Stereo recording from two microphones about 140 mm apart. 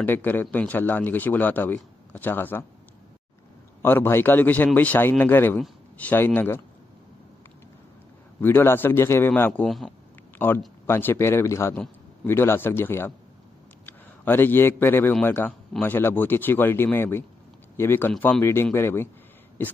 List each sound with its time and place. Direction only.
0.0 s a man's voice: 15° left (ahead or behind)
3.8 s a man's voice: 15° left (ahead or behind)
8.4 s a man's voice: 15° left (ahead or behind)
10.9 s a man's voice: 15° left (ahead or behind)